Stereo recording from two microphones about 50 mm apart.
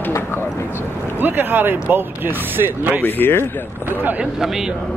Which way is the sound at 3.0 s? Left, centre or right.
Left.